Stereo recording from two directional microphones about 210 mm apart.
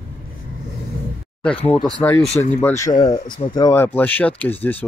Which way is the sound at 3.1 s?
35° left (ahead or behind).